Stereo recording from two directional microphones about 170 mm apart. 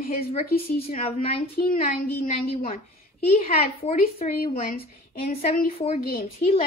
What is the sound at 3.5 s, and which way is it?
A woman's voice, 35° left (ahead or behind).